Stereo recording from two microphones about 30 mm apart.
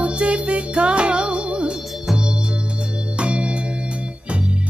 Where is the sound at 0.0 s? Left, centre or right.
Right.